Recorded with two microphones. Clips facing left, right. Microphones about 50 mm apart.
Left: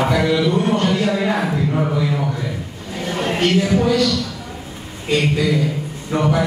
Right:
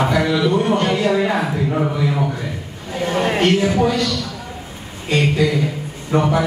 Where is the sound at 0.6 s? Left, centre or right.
Centre.